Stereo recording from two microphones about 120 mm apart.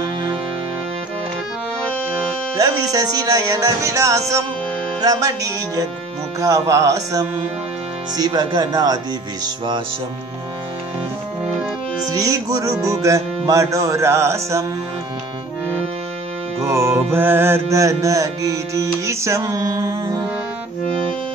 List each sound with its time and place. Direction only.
2.5 s music: 30° right (ahead or behind)
8.2 s speech: 35° right (ahead or behind)
12.1 s music: 30° right (ahead or behind)
16.6 s music: 25° right (ahead or behind)